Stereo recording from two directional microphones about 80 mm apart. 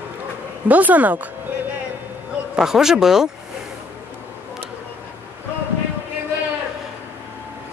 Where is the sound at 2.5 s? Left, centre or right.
Centre.